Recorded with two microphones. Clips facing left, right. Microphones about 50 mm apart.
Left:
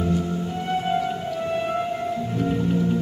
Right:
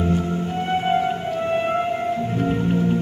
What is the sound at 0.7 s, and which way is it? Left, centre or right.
Music, right.